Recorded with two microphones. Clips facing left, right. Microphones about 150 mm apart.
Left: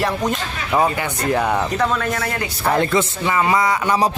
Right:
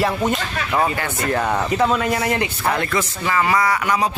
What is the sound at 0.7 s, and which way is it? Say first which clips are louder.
Speech: left 3 dB; 15° left (ahead or behind).